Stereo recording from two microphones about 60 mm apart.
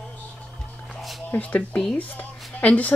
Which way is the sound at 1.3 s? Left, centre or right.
Left.